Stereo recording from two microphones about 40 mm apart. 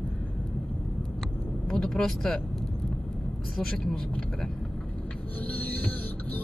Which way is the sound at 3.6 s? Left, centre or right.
Centre.